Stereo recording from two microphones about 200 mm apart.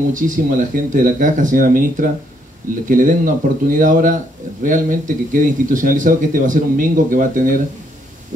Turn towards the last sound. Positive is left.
turn(degrees=-40)  # may be behind; listen again after turning